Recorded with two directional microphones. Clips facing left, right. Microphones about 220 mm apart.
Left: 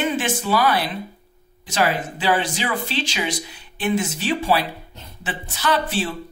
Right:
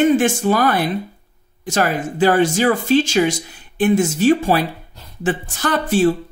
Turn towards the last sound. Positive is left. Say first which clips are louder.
# right 7 dB
turn(degrees=-45)  # may be behind; listen again after turning